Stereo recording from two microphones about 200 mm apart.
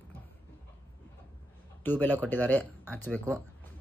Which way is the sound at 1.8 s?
10° left (ahead or behind).